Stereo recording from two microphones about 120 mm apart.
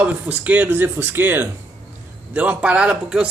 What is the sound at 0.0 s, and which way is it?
A man's voice, 10° right (ahead or behind).